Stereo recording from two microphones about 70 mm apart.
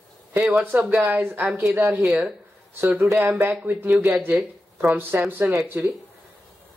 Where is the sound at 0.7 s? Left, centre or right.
Right.